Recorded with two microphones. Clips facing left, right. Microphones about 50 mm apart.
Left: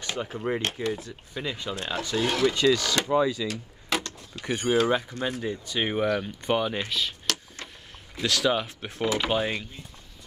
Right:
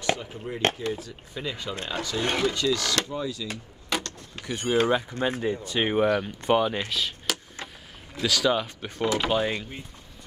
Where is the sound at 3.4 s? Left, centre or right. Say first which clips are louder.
Left 4 dB; left.